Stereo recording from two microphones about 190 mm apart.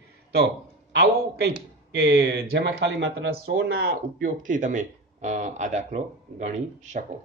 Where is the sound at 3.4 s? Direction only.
60° right (ahead or behind).